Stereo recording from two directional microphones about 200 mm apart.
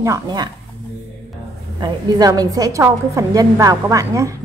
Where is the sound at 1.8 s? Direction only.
20° right (ahead or behind).